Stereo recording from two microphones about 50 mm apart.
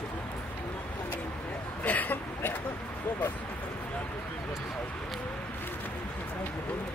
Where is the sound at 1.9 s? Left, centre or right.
Left.